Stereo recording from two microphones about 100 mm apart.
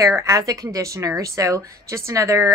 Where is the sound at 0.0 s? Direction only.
30° right (ahead or behind).